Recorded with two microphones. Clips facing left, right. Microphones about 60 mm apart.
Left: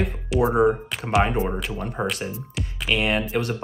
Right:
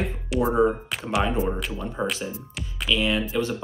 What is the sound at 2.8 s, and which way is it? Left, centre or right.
Speech, left.